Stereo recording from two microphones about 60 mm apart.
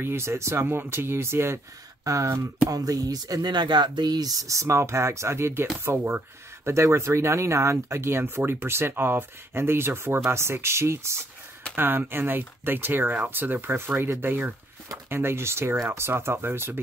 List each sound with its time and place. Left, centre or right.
0.0 s speech: right
2.0 s speech: right
2.7 s speech: right
11.7 s speech: right
16.1 s speech: right